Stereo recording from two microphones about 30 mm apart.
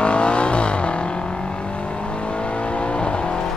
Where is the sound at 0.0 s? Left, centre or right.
Left.